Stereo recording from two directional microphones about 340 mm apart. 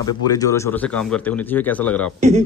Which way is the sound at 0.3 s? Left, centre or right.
Centre.